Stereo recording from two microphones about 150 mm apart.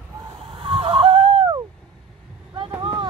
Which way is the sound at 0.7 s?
35° right (ahead or behind).